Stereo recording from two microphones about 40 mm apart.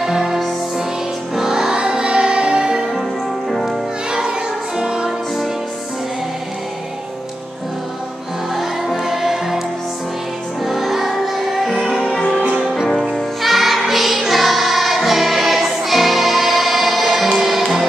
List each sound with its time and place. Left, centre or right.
0.0 s music: centre
3.4 s music: centre
4.7 s music: centre
8.5 s music: centre
10.6 s music: centre
12.5 s music: centre
13.4 s music: centre